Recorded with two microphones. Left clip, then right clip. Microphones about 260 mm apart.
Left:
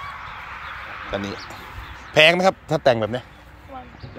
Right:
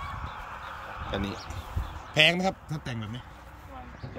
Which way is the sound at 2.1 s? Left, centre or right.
Centre.